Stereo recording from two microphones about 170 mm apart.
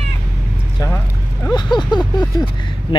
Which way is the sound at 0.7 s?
15° left (ahead or behind).